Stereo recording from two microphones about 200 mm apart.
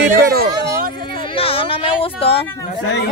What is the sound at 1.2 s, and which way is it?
Speech, 25° left (ahead or behind).